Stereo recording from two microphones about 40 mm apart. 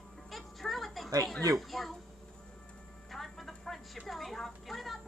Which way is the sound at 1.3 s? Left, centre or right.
Centre.